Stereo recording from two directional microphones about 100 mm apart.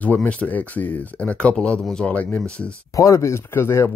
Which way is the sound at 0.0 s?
15° left (ahead or behind).